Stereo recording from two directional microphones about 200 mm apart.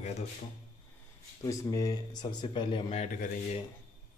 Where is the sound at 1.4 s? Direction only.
20° left (ahead or behind); by 3.3 s 35° left (ahead or behind).